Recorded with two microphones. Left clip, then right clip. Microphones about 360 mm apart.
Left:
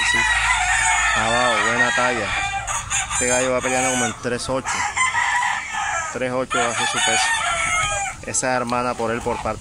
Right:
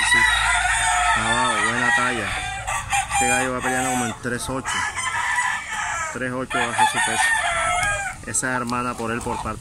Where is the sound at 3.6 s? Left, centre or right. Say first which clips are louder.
Left 2 dB; left.